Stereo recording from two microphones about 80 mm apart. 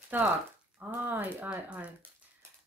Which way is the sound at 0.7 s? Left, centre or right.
Right.